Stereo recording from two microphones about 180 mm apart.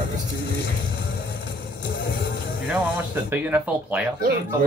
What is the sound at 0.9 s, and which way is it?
Music, 70° left (ahead or behind).